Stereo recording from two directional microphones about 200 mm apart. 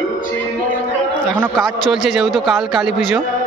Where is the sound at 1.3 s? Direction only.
5° right (ahead or behind).